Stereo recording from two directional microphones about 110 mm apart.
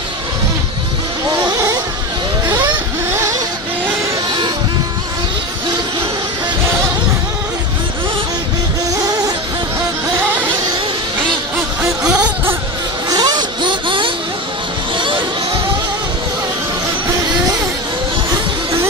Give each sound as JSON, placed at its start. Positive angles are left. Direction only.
{"t": 2.5, "sound": "vehicle", "side_deg": -25}
{"t": 12.0, "sound": "a sound", "side_deg": -5}
{"t": 13.1, "sound": "vehicle", "side_deg": -40}